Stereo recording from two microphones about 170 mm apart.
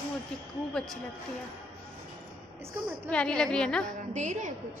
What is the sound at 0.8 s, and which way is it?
Speech, 5° left (ahead or behind).